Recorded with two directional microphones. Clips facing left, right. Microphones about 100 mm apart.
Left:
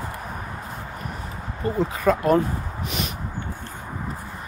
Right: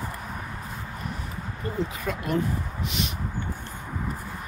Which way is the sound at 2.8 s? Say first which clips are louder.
Left 2 dB; 45° left (ahead or behind).